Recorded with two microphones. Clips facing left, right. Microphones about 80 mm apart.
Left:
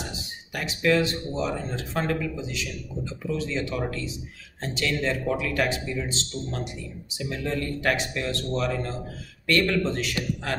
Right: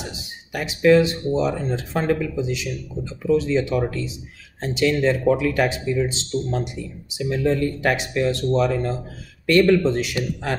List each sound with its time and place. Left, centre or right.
0.5 s speech: centre